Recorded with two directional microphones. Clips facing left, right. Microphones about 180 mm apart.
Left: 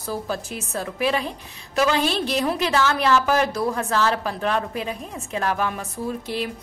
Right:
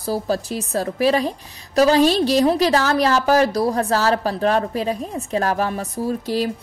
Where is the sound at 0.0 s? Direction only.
35° right (ahead or behind).